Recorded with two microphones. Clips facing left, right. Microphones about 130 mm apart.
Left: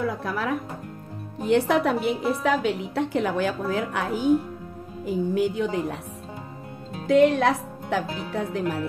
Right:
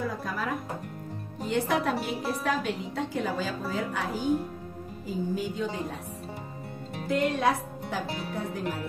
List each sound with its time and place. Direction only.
0.2 s a woman's voice: 75° left (ahead or behind)
7.1 s a woman's voice: 75° left (ahead or behind)